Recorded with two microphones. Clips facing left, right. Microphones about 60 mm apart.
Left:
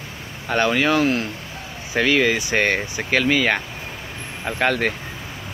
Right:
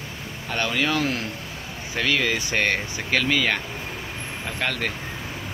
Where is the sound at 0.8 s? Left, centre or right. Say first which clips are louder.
Left 5 dB; left.